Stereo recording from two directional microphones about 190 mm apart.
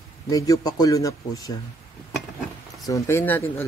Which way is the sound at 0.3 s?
20° left (ahead or behind).